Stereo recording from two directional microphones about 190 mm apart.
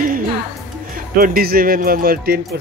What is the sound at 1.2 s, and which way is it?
Speech, 50° right (ahead or behind).